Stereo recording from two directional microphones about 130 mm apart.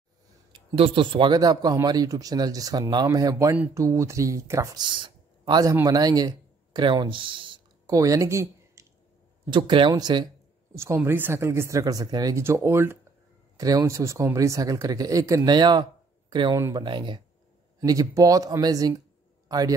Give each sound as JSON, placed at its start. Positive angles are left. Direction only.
{"t": 0.5, "sound": "speech", "side_deg": -40}
{"t": 4.8, "sound": "speech", "side_deg": -40}
{"t": 7.8, "sound": "speech", "side_deg": -25}
{"t": 9.5, "sound": "speech", "side_deg": -40}
{"t": 10.7, "sound": "a man's voice", "side_deg": -20}